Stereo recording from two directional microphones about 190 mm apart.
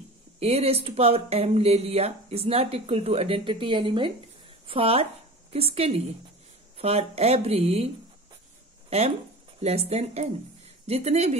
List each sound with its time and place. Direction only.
0.4 s a woman's voice: 30° right (ahead or behind)
9.6 s speech: 35° right (ahead or behind)